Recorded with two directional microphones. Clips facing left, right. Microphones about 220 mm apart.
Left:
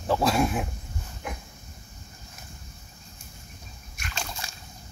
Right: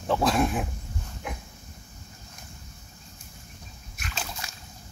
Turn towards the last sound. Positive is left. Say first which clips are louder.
# even
turn(degrees=-5)  # may be behind; listen again after turning